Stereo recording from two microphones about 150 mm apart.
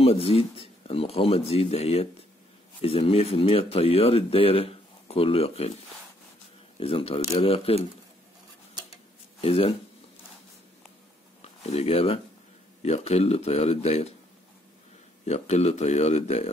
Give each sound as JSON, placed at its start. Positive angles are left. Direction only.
{"t": 0.0, "sound": "speech", "side_deg": 40}
{"t": 6.8, "sound": "speech", "side_deg": 40}
{"t": 9.4, "sound": "speech", "side_deg": 40}
{"t": 11.4, "sound": "speech", "side_deg": 45}
{"t": 15.2, "sound": "speech", "side_deg": 45}